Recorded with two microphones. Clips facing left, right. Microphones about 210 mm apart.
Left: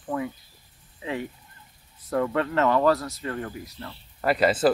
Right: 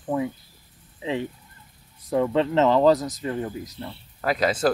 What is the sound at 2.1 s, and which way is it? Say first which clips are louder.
Speech: right 3 dB; 15° right (ahead or behind).